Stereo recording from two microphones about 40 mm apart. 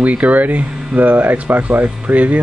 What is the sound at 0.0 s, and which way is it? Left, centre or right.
Speech, right.